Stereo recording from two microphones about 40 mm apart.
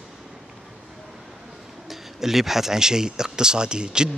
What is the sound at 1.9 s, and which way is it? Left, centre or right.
Speech, centre.